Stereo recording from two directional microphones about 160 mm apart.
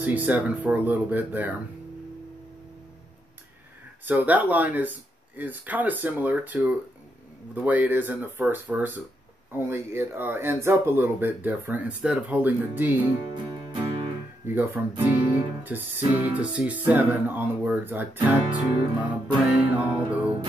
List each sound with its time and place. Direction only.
0.0 s speech: 10° right (ahead or behind)
4.0 s speech: 10° right (ahead or behind)
13.3 s music: 30° right (ahead or behind)
14.4 s speech: 15° right (ahead or behind)